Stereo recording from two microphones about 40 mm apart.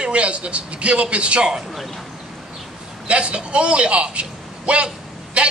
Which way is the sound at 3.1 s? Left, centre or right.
Right.